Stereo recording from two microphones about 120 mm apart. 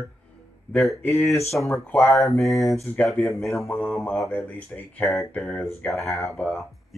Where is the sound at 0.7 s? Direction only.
Centre (ahead or behind).